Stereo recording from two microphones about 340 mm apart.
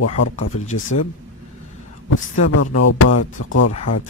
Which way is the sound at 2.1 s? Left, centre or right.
Left.